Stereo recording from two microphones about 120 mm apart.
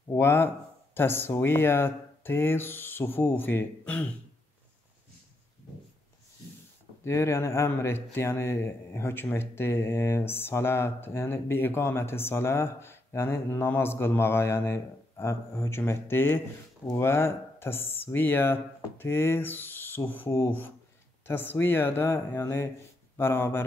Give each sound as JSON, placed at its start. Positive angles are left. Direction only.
{"t": 0.1, "sound": "speech", "side_deg": 20}
{"t": 7.1, "sound": "speech", "side_deg": 25}